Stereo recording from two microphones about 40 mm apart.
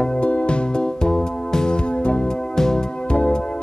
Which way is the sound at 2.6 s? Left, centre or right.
Centre.